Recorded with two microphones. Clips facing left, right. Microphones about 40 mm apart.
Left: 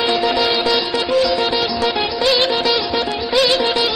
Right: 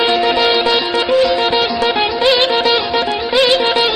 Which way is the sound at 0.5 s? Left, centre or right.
Right.